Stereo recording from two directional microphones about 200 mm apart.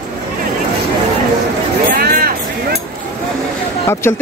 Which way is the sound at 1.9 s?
50° right (ahead or behind).